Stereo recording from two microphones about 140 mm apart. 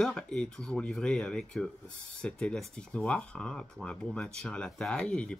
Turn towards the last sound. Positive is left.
turn(degrees=5)  # may be behind; listen again after turning